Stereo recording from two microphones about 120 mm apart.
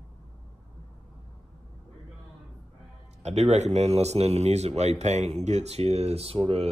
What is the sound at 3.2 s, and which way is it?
Speech, 65° right (ahead or behind).